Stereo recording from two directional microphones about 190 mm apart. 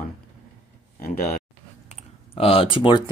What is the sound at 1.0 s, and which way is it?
Speech, 50° left (ahead or behind).